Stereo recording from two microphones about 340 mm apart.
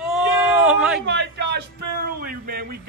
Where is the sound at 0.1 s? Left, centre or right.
Centre.